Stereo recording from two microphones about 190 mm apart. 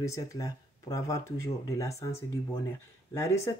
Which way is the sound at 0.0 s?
15° left (ahead or behind).